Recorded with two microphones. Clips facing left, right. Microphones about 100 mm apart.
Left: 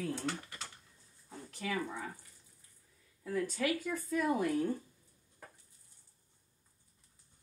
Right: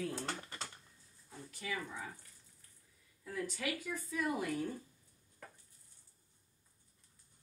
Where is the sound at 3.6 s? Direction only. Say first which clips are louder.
Left 6 dB; 50° left (ahead or behind).